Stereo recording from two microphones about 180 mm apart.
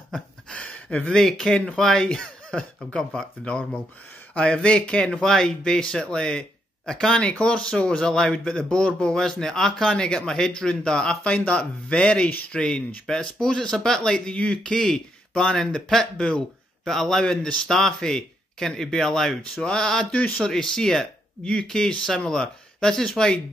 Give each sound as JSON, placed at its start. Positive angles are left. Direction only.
{"t": 0.1, "sound": "speech", "side_deg": 5}